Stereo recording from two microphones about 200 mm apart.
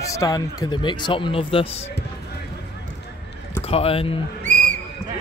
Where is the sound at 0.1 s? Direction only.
15° left (ahead or behind).